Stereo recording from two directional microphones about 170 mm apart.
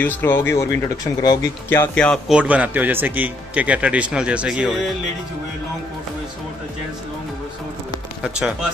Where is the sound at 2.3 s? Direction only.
5° right (ahead or behind).